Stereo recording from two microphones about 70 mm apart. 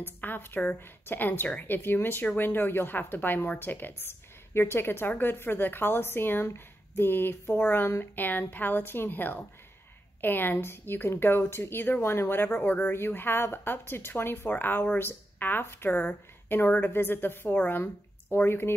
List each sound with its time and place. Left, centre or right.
0.0 s speech: left